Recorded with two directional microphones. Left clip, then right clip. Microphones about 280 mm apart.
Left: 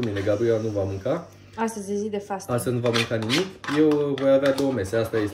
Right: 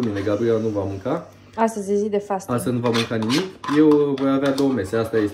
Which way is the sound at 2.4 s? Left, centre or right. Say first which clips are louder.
Right 2 dB; centre.